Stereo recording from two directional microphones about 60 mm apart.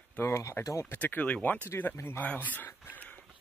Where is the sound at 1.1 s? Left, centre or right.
Left.